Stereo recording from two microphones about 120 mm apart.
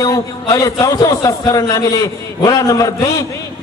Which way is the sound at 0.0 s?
30° left (ahead or behind).